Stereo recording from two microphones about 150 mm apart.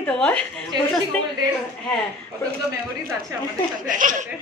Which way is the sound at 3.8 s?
60° right (ahead or behind).